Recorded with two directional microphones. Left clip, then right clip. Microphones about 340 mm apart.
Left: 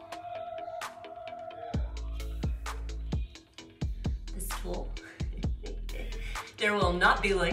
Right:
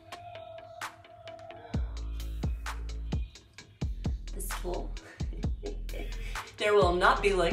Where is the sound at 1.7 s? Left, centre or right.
Centre.